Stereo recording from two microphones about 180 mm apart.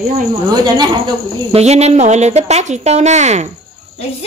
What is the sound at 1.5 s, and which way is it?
Speech, 35° right (ahead or behind).